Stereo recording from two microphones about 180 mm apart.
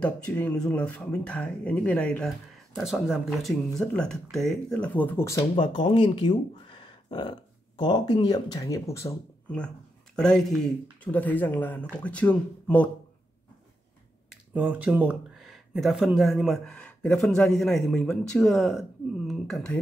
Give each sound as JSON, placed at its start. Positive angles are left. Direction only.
{"t": 0.0, "sound": "speech", "side_deg": 5}
{"t": 5.4, "sound": "speech", "side_deg": 30}
{"t": 10.1, "sound": "speech", "side_deg": 5}
{"t": 14.5, "sound": "speech", "side_deg": -10}